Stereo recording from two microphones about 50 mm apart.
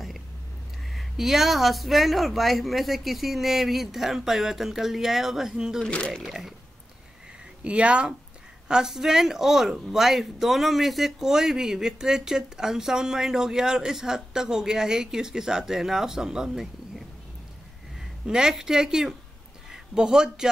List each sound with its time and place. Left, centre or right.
0.8 s speech: centre
5.9 s speech: left
6.2 s speech: centre
7.6 s speech: right
8.6 s speech: centre
18.2 s speech: centre